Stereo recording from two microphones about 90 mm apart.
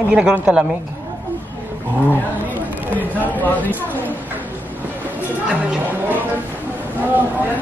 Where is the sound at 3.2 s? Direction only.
20° left (ahead or behind).